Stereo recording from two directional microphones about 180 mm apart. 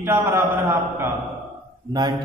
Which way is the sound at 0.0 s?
15° right (ahead or behind).